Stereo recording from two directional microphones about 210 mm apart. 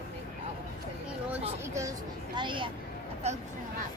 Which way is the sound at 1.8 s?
20° right (ahead or behind).